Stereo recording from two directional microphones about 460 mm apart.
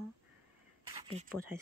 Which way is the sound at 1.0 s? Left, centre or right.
Centre.